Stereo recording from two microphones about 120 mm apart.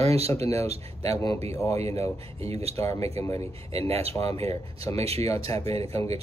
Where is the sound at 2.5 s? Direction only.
60° right (ahead or behind).